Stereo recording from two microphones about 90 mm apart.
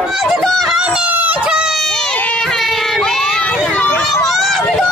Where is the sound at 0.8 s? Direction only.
15° right (ahead or behind).